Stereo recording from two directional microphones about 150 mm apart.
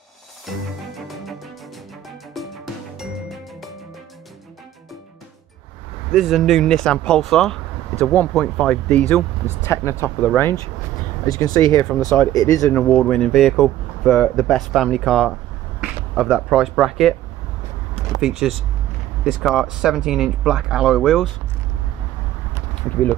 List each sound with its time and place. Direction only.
0.5 s music: centre (ahead or behind)
6.1 s speech: centre (ahead or behind)
9.7 s speech: 20° left (ahead or behind)
12.7 s speech: 5° left (ahead or behind)
18.2 s speech: centre (ahead or behind)